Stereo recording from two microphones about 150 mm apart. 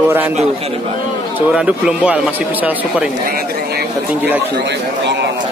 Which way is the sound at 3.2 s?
90° right.